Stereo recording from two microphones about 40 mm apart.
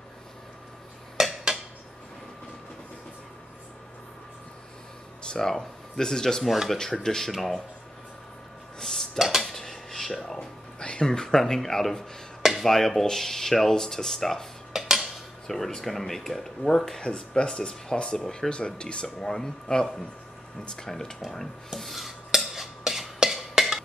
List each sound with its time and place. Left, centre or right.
1.2 s a sound: centre
5.4 s speech: centre
6.4 s speech: centre
6.8 s speech: centre
7.2 s speech: centre
8.7 s a sound: centre
9.2 s dishes: centre
9.5 s cutlery: centre
10.8 s speech: left
14.7 s dishes: centre
15.4 s speech: centre; by 19.0 s left
19.0 s speech: centre
21.2 s dishes: centre
23.3 s a sound: centre